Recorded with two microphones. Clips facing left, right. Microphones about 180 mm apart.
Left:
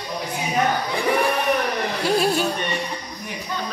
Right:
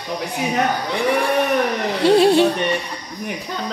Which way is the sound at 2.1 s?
30° right (ahead or behind).